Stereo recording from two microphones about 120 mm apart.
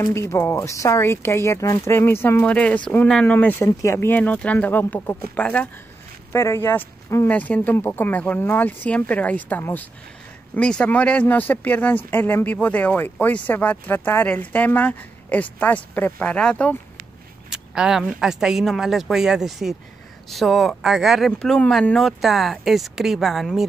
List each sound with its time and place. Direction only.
0.0 s speech: 25° left (ahead or behind)
3.6 s speech: 25° left (ahead or behind)
6.3 s speech: 20° left (ahead or behind)
17.5 s speech: 5° right (ahead or behind)